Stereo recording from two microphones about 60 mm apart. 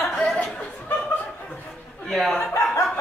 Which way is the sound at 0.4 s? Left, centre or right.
Centre.